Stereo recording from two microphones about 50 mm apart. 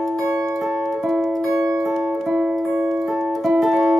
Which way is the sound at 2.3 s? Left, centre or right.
Right.